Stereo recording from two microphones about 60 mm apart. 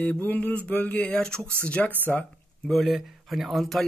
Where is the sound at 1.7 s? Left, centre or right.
Left.